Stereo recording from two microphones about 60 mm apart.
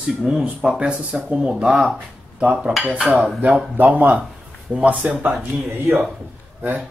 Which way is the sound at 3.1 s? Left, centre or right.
Right.